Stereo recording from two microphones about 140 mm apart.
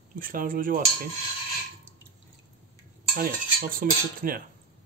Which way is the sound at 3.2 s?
90° right.